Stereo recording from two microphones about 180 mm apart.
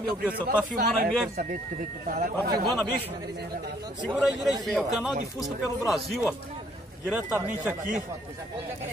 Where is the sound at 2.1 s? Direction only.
55° right (ahead or behind).